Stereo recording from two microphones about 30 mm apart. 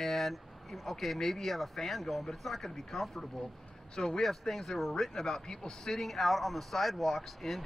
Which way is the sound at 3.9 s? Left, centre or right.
Left.